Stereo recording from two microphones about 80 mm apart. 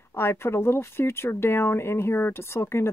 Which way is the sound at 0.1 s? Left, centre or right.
Left.